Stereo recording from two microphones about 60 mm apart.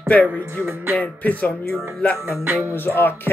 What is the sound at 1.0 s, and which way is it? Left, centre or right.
Speech, left.